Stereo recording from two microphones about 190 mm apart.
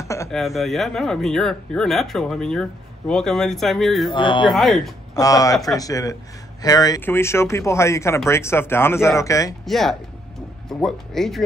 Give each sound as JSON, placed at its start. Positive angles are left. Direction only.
{"t": 0.0, "sound": "a sound", "side_deg": 15}
{"t": 0.3, "sound": "speech", "side_deg": 0}
{"t": 4.1, "sound": "speech", "side_deg": 25}
{"t": 4.5, "sound": "speech", "side_deg": 0}
{"t": 5.1, "sound": "speech", "side_deg": 20}
{"t": 9.7, "sound": "speech", "side_deg": 0}